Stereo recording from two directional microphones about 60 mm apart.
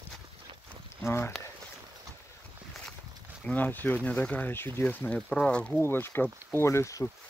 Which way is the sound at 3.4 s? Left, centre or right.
Left.